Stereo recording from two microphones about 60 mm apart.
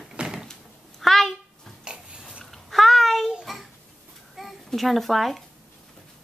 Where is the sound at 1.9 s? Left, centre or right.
Centre.